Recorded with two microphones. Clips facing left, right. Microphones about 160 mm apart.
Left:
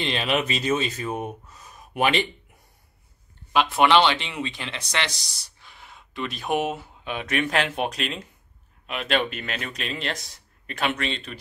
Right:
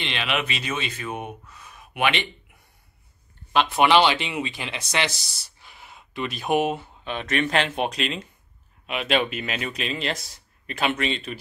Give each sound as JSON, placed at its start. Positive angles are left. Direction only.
{"t": 0.0, "sound": "speech", "side_deg": 40}
{"t": 3.5, "sound": "speech", "side_deg": -5}